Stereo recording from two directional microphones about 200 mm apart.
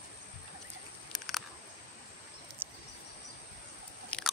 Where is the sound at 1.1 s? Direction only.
Centre (ahead or behind).